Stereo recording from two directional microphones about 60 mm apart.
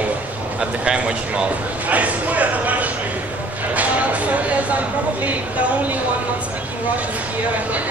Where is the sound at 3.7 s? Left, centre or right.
Right.